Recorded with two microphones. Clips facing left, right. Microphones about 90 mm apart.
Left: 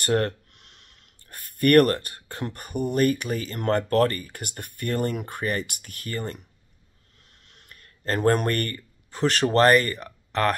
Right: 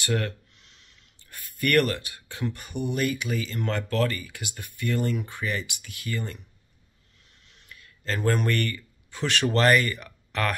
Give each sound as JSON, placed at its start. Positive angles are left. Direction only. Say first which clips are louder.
{"t": 0.0, "sound": "speech", "louder": "left 5 dB", "side_deg": 50}
{"t": 7.4, "sound": "speech", "louder": "right 1 dB", "side_deg": 50}